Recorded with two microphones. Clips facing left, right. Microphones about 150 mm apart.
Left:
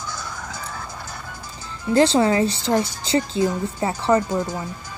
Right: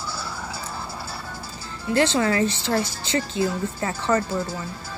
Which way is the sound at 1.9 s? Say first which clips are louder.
Left 4 dB; 30° left (ahead or behind).